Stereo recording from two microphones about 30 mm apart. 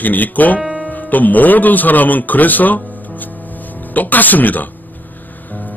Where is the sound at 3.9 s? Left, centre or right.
Left.